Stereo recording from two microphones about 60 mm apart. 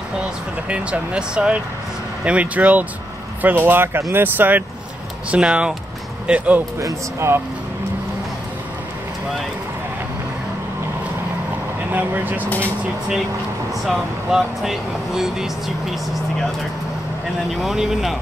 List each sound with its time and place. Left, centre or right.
0.7 s speech: right
5.3 s speech: centre
6.8 s speech: right
11.9 s speech: right
12.4 s speech: left
13.8 s speech: centre
17.6 s speech: centre